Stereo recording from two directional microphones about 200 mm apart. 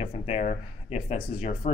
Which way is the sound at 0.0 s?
35° left (ahead or behind).